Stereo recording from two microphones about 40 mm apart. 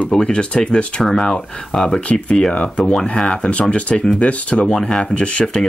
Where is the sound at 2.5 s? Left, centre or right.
Left.